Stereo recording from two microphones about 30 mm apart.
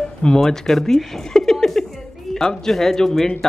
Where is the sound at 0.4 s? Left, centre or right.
Centre.